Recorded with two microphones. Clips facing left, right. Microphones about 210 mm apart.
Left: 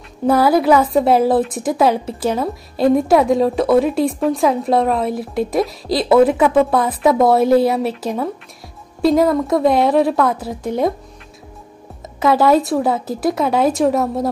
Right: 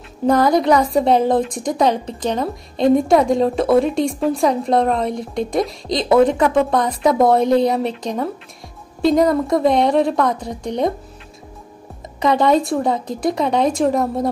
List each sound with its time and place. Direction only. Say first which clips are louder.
0.3 s a woman's voice: left 1 dB; 5° left (ahead or behind)
12.2 s a woman's voice: left 2 dB; 5° left (ahead or behind)